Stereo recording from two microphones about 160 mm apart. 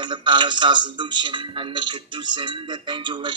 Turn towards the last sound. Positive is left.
turn(degrees=-30)  # may be behind; listen again after turning